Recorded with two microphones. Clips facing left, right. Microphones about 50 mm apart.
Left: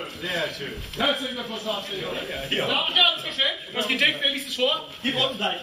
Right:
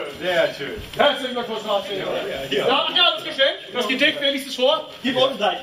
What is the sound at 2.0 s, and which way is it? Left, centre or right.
Speech, right.